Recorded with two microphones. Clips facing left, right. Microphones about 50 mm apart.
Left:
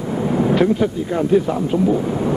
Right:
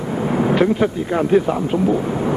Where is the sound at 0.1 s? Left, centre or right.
Centre.